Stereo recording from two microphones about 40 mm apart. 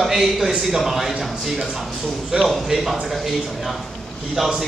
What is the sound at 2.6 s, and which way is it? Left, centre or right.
A man's voice, centre.